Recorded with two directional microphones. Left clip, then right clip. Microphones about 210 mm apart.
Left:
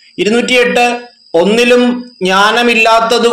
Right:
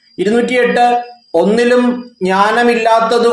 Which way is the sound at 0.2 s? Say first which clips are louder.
Left 2 dB; 20° left (ahead or behind).